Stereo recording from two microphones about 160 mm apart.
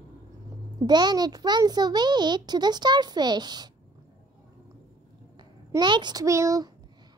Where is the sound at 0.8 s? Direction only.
25° right (ahead or behind).